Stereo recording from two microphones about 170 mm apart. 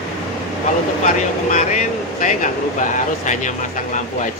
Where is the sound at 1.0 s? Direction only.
45° left (ahead or behind).